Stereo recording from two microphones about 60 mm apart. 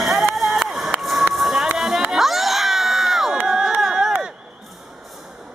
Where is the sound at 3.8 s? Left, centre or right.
Centre.